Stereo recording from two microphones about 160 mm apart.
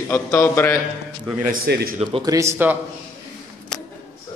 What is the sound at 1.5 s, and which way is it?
Speech, 80° right.